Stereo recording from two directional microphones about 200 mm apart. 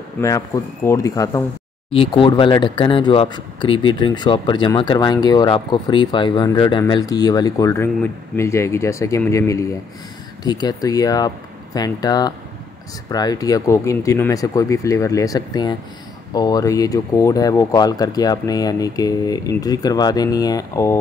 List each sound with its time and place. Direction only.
0.8 s speech: 15° left (ahead or behind)
1.9 s speech: 25° left (ahead or behind)